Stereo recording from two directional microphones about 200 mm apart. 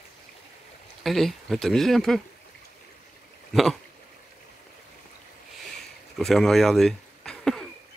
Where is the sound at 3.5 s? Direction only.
Centre (ahead or behind).